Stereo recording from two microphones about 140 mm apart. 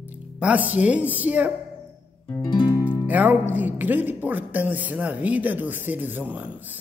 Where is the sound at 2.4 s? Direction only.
30° left (ahead or behind).